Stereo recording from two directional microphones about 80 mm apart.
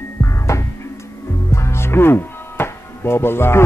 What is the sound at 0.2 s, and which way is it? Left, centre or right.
Music, left.